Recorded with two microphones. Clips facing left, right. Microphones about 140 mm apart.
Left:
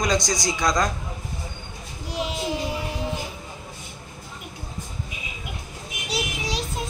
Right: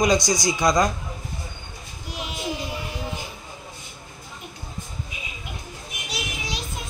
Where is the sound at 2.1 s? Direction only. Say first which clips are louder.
Left 6 dB; 30° left (ahead or behind).